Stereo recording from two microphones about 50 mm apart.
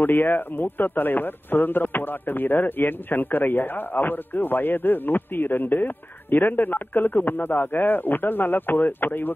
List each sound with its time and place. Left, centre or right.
0.0 s speech: left